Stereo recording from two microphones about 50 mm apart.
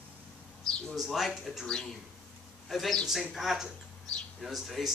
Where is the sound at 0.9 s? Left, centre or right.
Centre.